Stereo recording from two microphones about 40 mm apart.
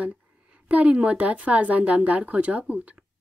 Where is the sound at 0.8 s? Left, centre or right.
Right.